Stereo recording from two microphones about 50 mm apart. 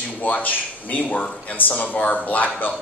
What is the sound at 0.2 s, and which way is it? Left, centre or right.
A man's voice, left.